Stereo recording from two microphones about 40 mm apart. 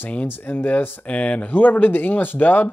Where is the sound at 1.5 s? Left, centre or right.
Left.